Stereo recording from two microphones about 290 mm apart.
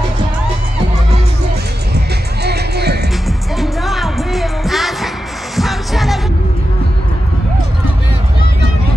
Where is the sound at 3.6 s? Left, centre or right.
Centre.